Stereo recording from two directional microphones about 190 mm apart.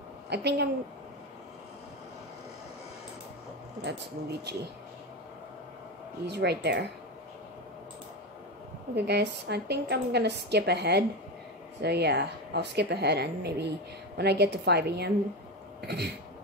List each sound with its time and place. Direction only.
0.3 s speech: 60° right (ahead or behind)
3.8 s speech: 60° right (ahead or behind)
6.2 s speech: 60° right (ahead or behind)
8.9 s speech: 60° right (ahead or behind)